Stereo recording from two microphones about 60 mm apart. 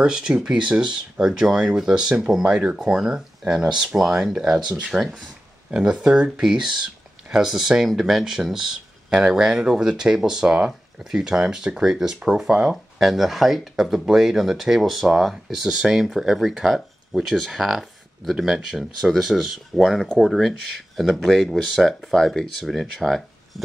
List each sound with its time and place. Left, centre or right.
0.0 s speech: centre
4.9 s speech: centre
5.7 s speech: centre
13.1 s speech: centre